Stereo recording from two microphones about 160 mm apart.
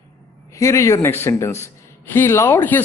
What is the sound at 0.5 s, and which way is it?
Speech, 20° left (ahead or behind).